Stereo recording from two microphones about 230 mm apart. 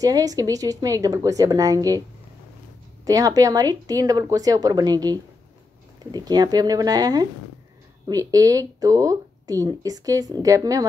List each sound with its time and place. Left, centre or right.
0.0 s speech: centre
3.1 s speech: centre